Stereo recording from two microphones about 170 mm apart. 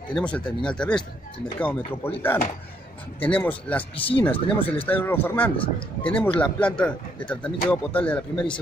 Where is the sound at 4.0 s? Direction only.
30° left (ahead or behind).